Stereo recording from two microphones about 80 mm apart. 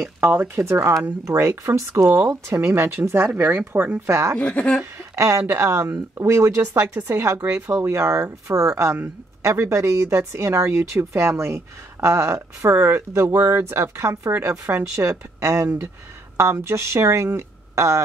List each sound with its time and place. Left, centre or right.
0.2 s speech: right
4.4 s a woman's voice: centre
5.1 s a woman's voice: right